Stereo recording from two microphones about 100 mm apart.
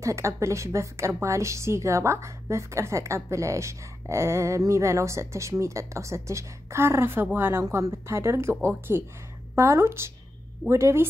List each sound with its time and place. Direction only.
0.0 s a woman's voice: 30° right (ahead or behind)